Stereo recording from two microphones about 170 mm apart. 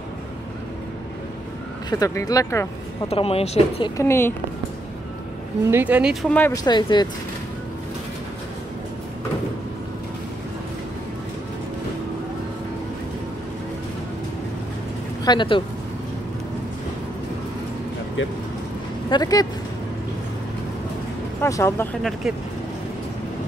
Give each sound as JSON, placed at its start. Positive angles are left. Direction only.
{"t": 1.9, "sound": "speech", "side_deg": 20}
{"t": 3.1, "sound": "a woman's voice", "side_deg": 35}
{"t": 3.9, "sound": "speech", "side_deg": 15}
{"t": 5.7, "sound": "speech", "side_deg": -10}
{"t": 6.2, "sound": "speech", "side_deg": 10}
{"t": 6.5, "sound": "speech", "side_deg": 25}
{"t": 15.2, "sound": "speech", "side_deg": 30}
{"t": 19.0, "sound": "speech", "side_deg": 25}
{"t": 21.4, "sound": "speech", "side_deg": 15}